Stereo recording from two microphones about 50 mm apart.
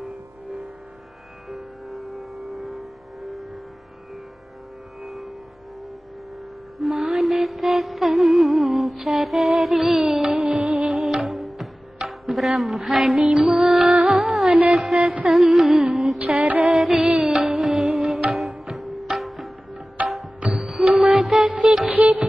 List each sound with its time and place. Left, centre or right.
1.5 s music: centre
5.0 s music: centre
6.8 s music: centre
10.5 s music: right
10.9 s music: centre
14.8 s music: right
15.2 s carnatic music: centre
16.2 s music: right
16.7 s music: centre
21.5 s music: right